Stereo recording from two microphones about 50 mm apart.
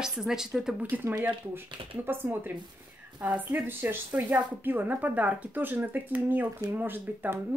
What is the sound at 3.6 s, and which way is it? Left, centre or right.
Speech, right.